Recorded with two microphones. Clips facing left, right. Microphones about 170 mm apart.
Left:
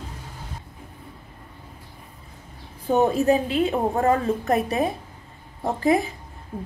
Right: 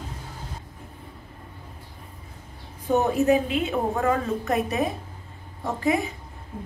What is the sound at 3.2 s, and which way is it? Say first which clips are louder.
A woman's voice: left 1 dB; 35° left (ahead or behind).